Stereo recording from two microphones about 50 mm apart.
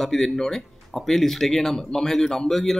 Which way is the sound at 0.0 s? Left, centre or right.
Centre.